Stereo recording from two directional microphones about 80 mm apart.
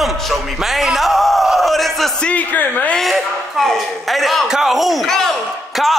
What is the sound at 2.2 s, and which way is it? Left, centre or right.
Speech, centre.